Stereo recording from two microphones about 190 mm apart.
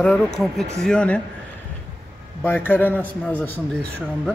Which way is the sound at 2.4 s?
10° left (ahead or behind).